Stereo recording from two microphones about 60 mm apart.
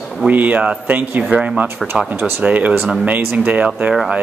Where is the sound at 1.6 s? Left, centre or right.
Right.